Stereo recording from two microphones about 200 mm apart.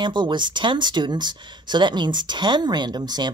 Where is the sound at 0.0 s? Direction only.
25° right (ahead or behind).